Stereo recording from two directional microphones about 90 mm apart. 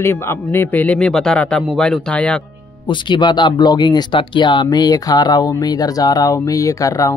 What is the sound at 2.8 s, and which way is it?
Speech, 60° left (ahead or behind).